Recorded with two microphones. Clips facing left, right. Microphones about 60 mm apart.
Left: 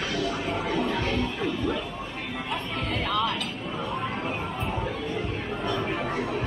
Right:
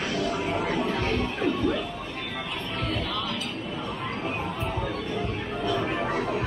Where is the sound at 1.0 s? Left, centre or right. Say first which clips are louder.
Right 1 dB; right.